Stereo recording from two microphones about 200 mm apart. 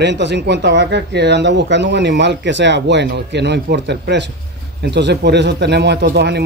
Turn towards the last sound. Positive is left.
turn(degrees=-55)  # may be behind; listen again after turning